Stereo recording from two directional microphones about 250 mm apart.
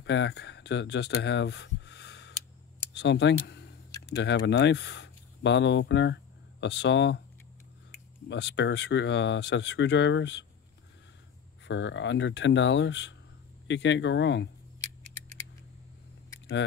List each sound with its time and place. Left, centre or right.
0.0 s speech: left
8.3 s speech: left
11.6 s speech: left